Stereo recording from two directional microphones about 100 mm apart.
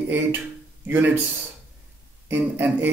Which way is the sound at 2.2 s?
20° right (ahead or behind).